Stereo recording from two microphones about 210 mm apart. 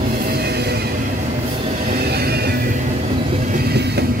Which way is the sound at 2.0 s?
50° right (ahead or behind).